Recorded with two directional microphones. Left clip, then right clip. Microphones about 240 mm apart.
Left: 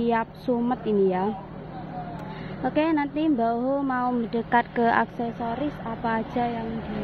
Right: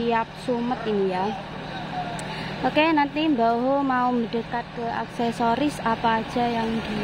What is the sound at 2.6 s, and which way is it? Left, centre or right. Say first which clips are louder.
Speech: right 4 dB; centre.